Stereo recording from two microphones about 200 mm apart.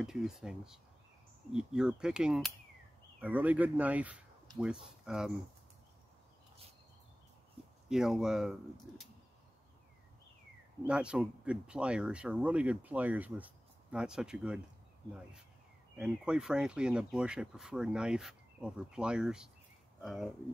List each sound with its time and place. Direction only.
0.0 s speech: centre (ahead or behind)
7.9 s speech: 5° right (ahead or behind)
10.9 s speech: 5° right (ahead or behind)
16.0 s speech: 5° right (ahead or behind)